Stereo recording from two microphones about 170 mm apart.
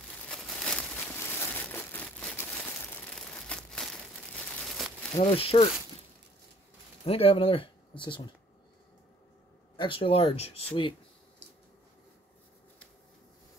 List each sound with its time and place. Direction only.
0.3 s crumpling: centre (ahead or behind)
5.1 s speech: 35° left (ahead or behind)
7.1 s speech: 35° left (ahead or behind)
9.8 s speech: 30° left (ahead or behind)